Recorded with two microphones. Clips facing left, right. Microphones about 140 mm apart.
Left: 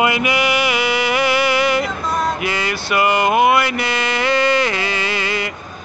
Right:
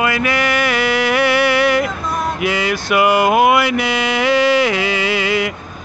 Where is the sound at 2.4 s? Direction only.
5° right (ahead or behind).